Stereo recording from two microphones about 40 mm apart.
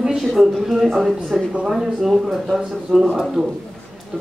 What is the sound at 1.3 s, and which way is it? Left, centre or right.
Speech, right.